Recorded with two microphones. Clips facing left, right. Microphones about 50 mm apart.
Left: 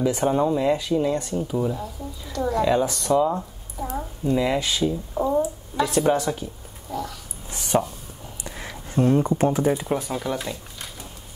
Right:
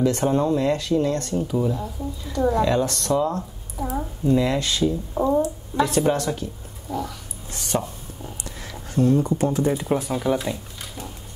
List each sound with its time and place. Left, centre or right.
0.0 s speech: centre
2.3 s a woman's voice: centre
2.6 s speech: centre
5.1 s speech: centre
7.5 s speech: centre
8.5 s a sound: left
9.7 s speech: centre